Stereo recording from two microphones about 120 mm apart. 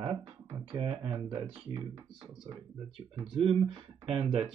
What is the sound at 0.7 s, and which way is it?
Speech, 50° right (ahead or behind).